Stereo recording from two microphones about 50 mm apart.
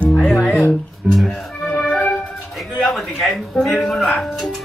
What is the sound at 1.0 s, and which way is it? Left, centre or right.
Speech, right.